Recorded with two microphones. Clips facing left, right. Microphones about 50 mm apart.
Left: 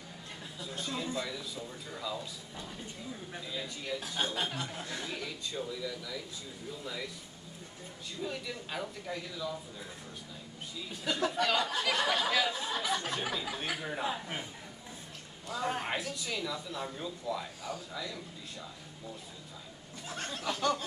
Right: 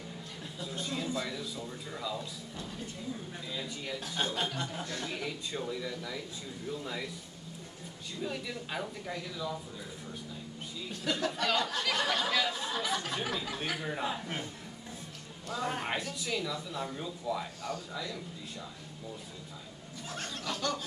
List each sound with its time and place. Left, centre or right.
0.6 s a sound: centre
1.2 s speech: centre
3.3 s speech: centre
5.5 s speech: centre
8.2 s speech: centre
10.9 s speech: centre
15.5 s speech: centre
17.6 s speech: centre
20.3 s speech: centre